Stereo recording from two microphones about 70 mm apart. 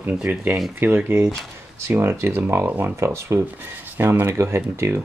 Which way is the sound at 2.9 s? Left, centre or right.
Right.